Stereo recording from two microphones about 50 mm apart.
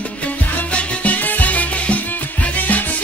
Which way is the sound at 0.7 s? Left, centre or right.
Left.